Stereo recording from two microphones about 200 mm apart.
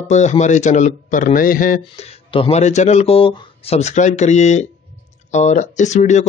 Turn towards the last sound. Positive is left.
turn(degrees=35)  # may be behind; listen again after turning